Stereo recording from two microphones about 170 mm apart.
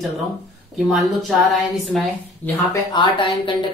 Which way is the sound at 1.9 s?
Centre (ahead or behind).